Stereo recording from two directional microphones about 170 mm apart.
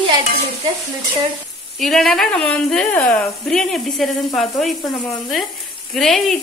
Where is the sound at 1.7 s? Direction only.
Centre (ahead or behind).